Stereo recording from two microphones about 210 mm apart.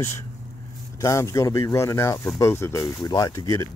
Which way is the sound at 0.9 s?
15° left (ahead or behind).